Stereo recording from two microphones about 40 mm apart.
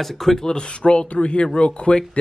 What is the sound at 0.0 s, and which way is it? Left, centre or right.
Speech, centre.